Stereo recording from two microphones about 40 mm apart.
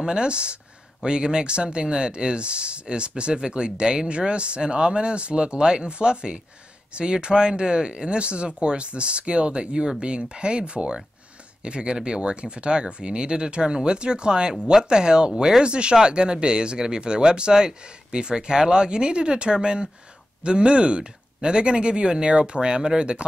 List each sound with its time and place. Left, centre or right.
0.0 s speech: right